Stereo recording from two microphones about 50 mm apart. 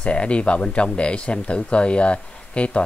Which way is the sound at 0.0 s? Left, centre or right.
Left.